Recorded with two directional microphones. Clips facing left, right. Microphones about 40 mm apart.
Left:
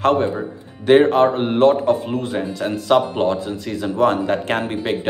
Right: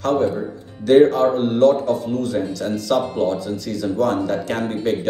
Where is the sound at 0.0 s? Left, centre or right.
Left.